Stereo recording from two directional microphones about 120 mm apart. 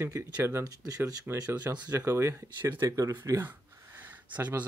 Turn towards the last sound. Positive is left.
turn(degrees=-15)  # may be behind; listen again after turning